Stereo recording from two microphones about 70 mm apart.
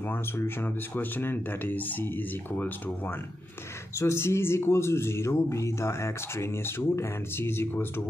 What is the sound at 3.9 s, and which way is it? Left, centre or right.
Speech, left.